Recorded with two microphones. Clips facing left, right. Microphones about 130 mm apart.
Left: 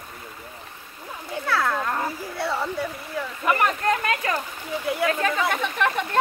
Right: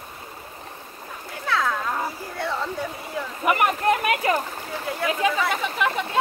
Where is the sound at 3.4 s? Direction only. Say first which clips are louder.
Right 2 dB; 20° right (ahead or behind).